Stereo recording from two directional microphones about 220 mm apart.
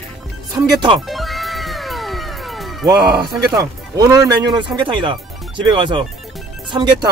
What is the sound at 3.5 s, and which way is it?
Speech, 15° right (ahead or behind).